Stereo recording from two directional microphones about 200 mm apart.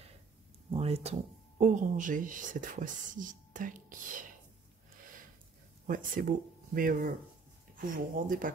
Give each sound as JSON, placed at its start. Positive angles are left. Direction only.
{"t": 0.7, "sound": "speech", "side_deg": -30}
{"t": 5.9, "sound": "speech", "side_deg": -45}